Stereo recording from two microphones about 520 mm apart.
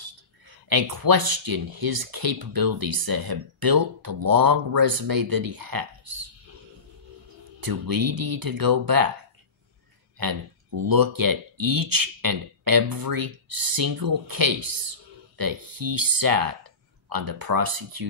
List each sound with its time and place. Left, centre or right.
0.0 s speech: right
7.6 s speech: right
10.2 s speech: right